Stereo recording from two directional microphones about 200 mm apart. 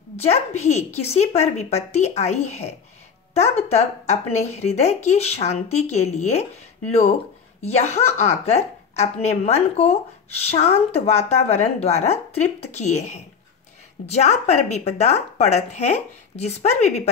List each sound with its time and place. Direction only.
0.1 s a woman's voice: 30° left (ahead or behind)
7.6 s a woman's voice: 35° left (ahead or behind)